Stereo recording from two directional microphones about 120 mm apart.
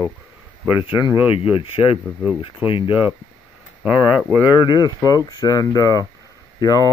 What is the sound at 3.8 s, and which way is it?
Speech, 10° right (ahead or behind).